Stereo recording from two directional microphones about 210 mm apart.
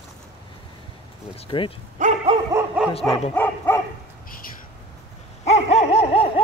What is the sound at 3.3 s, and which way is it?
Dog, 10° left (ahead or behind).